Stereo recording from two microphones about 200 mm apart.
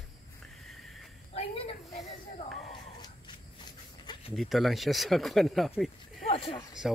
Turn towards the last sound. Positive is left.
turn(degrees=30)  # may be behind; listen again after turning